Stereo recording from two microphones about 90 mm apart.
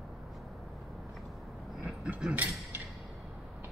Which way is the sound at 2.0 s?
15° right (ahead or behind).